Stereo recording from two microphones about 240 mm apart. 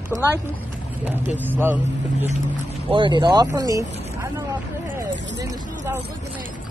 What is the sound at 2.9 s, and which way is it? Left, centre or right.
Speech, centre.